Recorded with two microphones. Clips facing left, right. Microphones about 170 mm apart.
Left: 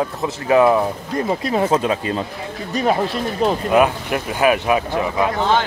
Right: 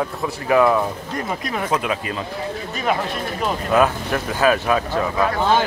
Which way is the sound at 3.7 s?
15° left (ahead or behind).